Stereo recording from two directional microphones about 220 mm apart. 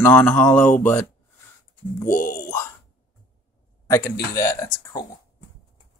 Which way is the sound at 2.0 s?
40° left (ahead or behind).